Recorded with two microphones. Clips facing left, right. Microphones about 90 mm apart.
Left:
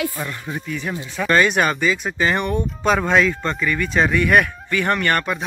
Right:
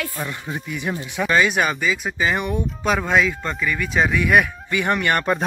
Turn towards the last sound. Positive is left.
turn(degrees=-15)  # may be behind; listen again after turning